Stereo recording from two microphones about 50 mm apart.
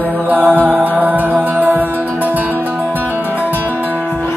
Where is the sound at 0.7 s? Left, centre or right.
Right.